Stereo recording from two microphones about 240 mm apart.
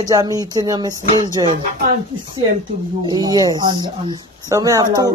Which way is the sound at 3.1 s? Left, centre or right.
Centre.